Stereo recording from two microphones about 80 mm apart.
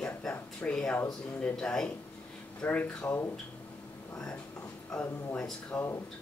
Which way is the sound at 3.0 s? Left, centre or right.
Left.